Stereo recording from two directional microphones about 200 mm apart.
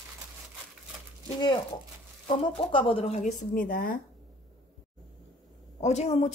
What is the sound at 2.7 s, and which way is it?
A woman's voice, 25° left (ahead or behind).